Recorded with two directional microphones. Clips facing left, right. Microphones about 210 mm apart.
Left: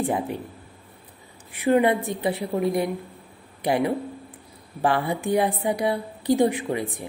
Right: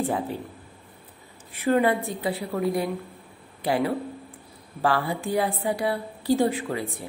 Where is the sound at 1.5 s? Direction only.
15° left (ahead or behind).